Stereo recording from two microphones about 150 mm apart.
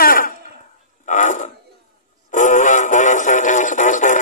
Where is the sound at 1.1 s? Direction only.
55° left (ahead or behind).